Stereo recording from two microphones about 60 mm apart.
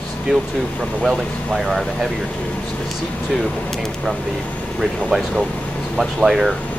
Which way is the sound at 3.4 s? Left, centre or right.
Centre.